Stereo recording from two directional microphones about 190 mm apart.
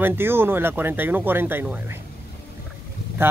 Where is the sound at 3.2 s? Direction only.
10° right (ahead or behind).